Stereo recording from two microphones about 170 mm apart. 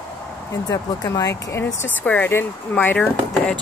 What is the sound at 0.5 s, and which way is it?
Speech, 20° left (ahead or behind).